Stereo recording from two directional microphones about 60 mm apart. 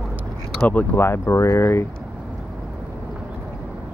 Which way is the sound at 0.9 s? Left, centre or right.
Left.